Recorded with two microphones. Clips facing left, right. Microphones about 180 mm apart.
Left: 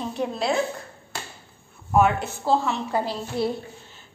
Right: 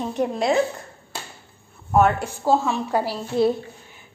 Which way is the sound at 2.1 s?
10° right (ahead or behind).